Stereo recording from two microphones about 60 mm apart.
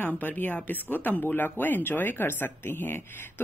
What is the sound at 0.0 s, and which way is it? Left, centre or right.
Speech, left.